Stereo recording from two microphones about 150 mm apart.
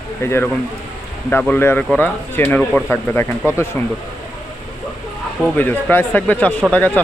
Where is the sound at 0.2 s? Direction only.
15° left (ahead or behind).